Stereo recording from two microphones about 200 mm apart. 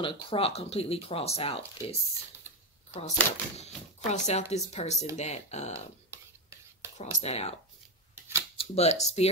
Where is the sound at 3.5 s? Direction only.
35° left (ahead or behind).